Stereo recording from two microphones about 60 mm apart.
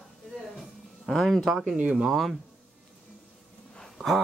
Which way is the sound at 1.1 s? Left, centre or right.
Centre.